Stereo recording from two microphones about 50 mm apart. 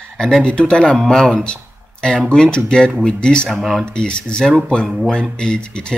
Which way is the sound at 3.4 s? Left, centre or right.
Centre.